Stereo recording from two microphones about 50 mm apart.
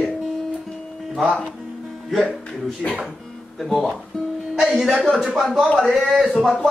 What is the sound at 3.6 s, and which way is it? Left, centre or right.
A man's voice, centre.